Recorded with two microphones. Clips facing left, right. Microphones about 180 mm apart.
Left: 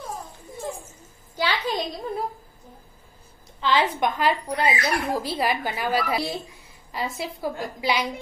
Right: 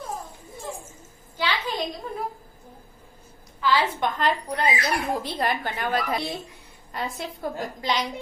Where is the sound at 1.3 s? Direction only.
35° left (ahead or behind).